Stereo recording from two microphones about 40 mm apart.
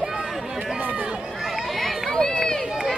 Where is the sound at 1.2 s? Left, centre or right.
Centre.